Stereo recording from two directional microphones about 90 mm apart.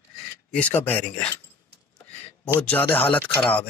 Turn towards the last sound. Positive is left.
turn(degrees=15)  # may be behind; listen again after turning